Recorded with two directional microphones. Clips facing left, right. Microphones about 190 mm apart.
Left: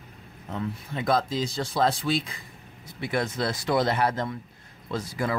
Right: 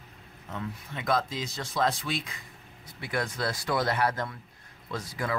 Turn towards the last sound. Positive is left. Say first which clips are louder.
# left 4 dB
turn(degrees=30)  # may be behind; listen again after turning